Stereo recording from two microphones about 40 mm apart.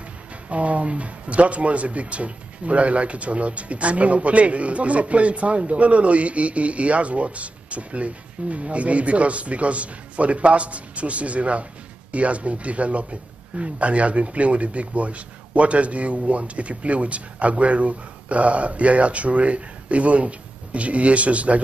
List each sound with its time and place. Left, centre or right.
0.5 s speech: right